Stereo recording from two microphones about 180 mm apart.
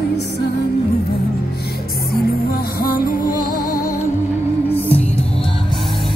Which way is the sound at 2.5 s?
55° left (ahead or behind).